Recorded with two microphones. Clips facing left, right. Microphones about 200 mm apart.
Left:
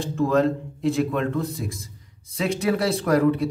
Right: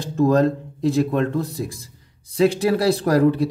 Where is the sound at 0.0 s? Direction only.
40° right (ahead or behind).